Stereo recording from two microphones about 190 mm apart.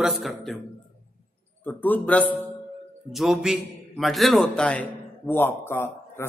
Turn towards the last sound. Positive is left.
turn(degrees=10)  # may be behind; listen again after turning